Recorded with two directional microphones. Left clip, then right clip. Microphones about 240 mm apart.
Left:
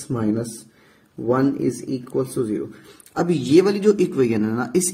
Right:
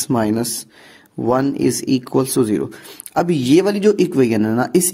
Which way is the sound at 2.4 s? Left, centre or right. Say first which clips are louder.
Right 6 dB; right.